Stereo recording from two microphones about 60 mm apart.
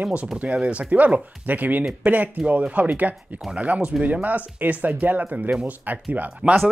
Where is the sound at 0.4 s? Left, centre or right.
Right.